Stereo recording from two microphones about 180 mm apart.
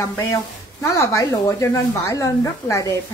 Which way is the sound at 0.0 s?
15° left (ahead or behind).